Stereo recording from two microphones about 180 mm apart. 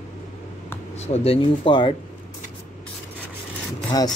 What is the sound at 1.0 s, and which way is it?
Speech, 35° left (ahead or behind).